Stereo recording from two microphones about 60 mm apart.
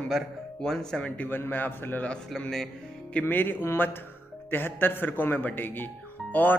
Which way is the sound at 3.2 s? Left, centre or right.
Left.